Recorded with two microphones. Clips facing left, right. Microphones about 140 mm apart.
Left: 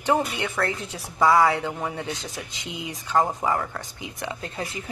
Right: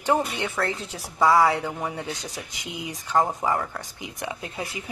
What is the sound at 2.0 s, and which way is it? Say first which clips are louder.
Speech: left 1 dB; 20° left (ahead or behind).